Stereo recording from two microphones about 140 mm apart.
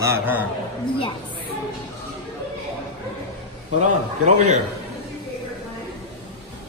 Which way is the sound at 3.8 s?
60° right (ahead or behind).